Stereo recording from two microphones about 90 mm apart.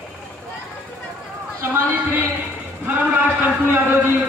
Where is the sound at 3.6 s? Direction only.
20° right (ahead or behind).